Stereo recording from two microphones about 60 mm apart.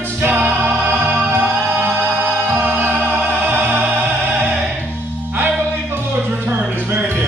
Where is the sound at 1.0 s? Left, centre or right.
Right.